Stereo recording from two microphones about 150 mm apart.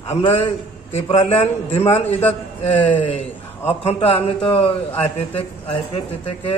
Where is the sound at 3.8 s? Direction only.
40° left (ahead or behind).